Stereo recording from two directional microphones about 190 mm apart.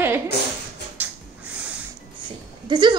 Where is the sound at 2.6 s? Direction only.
25° right (ahead or behind).